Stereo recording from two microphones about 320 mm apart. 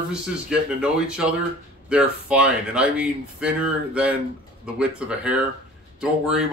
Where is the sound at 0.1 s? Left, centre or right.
Centre.